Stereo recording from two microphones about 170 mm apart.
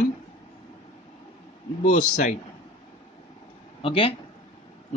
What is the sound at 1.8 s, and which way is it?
Speech, 45° left (ahead or behind).